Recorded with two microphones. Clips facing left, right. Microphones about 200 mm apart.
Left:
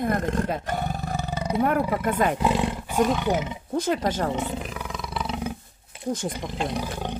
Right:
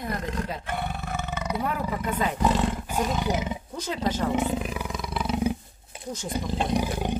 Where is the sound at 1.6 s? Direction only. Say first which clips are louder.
Left 10 dB; 55° left (ahead or behind).